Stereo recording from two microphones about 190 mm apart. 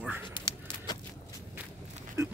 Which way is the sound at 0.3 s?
20° left (ahead or behind).